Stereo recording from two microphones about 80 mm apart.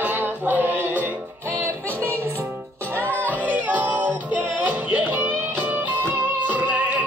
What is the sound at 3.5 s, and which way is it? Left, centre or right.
Music, right.